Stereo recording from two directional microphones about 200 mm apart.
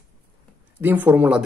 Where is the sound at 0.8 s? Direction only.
10° right (ahead or behind).